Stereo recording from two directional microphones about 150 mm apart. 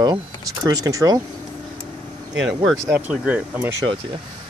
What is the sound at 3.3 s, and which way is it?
Speech, 10° right (ahead or behind).